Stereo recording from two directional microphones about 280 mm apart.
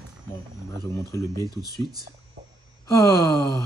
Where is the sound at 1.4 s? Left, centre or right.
Centre.